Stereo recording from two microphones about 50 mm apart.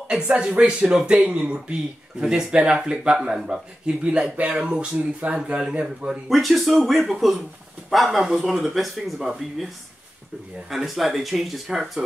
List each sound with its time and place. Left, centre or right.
0.1 s speech: centre
1.7 s speech: centre
6.2 s speech: centre
10.7 s speech: centre